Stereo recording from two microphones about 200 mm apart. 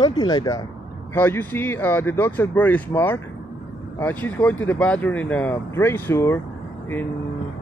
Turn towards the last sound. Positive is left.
turn(degrees=10)  # may be behind; listen again after turning